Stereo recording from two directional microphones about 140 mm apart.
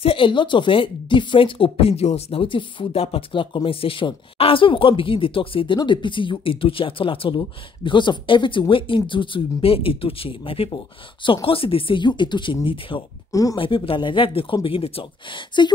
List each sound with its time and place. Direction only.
0.0 s speech: 40° left (ahead or behind)
13.3 s speech: 25° left (ahead or behind)
13.6 s speech: 40° left (ahead or behind)